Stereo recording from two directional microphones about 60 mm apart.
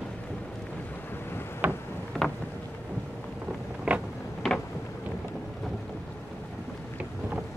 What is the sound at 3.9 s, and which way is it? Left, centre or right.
Vehicle, centre.